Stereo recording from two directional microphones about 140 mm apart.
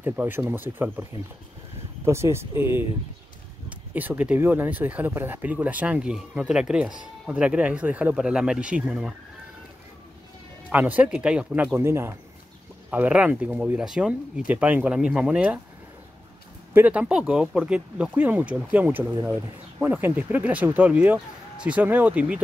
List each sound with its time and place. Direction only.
0.0 s speech: 15° right (ahead or behind)
2.0 s speech: 20° right (ahead or behind)
3.9 s speech: 10° right (ahead or behind)
10.7 s speech: 10° right (ahead or behind)
16.7 s speech: 10° right (ahead or behind)
19.0 s speech: 30° right (ahead or behind)
19.8 s speech: 15° right (ahead or behind)